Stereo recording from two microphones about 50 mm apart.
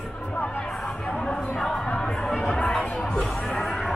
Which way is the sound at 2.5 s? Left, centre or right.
Centre.